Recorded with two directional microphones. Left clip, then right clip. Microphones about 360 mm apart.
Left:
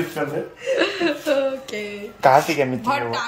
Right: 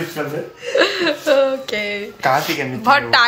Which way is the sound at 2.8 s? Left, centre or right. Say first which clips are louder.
Right 9 dB; centre.